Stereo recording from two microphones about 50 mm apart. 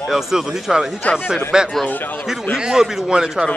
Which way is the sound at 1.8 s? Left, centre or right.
Left.